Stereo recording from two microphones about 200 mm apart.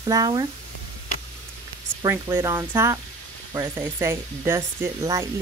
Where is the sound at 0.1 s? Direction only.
20° right (ahead or behind).